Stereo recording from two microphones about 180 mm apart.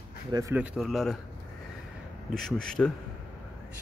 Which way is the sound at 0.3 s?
20° right (ahead or behind).